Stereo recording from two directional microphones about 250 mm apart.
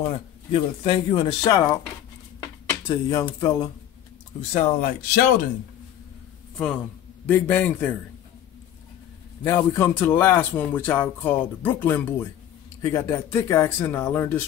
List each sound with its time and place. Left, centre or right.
0.0 s speech: left
7.2 s speech: centre
9.4 s speech: centre